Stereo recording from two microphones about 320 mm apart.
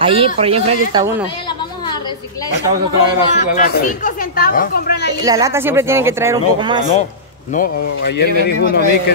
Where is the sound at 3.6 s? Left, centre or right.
Left.